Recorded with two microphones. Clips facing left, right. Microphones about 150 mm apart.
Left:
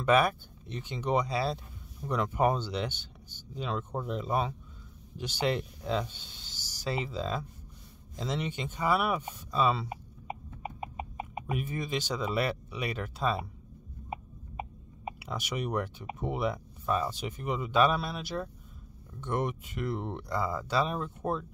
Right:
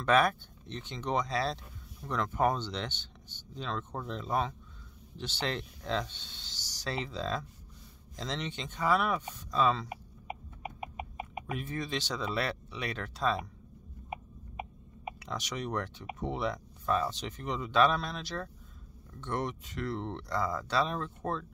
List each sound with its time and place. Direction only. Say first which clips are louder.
0.0 s speech: left 1 dB; 5° left (ahead or behind)
9.8 s chicken: left 2 dB; 30° left (ahead or behind)
11.5 s speech: left 2 dB; 10° left (ahead or behind)
14.1 s a sound: left 2 dB; 30° left (ahead or behind)
15.1 s speech: left 3 dB; 10° left (ahead or behind)